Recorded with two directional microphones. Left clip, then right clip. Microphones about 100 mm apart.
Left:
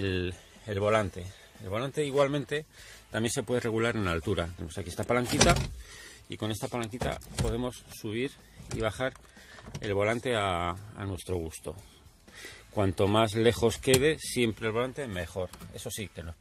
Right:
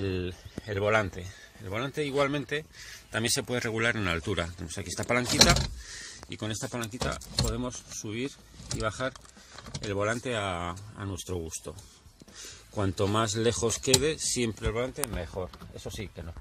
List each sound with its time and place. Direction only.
0.0 s a sound: 55° left (ahead or behind)
0.7 s speech: 35° left (ahead or behind); by 2.6 s 50° left (ahead or behind)
3.1 s speech: 70° left (ahead or behind); by 5.0 s 40° left (ahead or behind)
5.0 s speech: 25° left (ahead or behind)
6.2 s speech: 40° left (ahead or behind)
11.0 s speech: 20° left (ahead or behind)
12.7 s speech: 30° left (ahead or behind)